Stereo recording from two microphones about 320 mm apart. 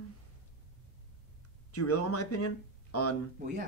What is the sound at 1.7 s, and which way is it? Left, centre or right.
Speech, left.